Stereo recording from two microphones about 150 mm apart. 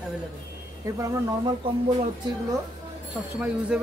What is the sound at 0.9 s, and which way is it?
Speech, 20° right (ahead or behind).